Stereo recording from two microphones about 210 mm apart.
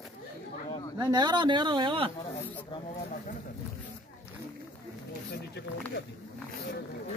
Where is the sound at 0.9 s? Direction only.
20° right (ahead or behind).